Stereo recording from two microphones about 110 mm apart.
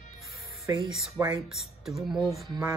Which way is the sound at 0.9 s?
Centre (ahead or behind).